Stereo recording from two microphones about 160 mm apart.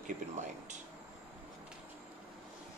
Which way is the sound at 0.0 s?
50° right (ahead or behind).